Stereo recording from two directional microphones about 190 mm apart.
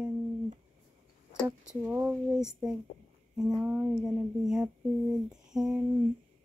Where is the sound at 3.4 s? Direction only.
Centre (ahead or behind).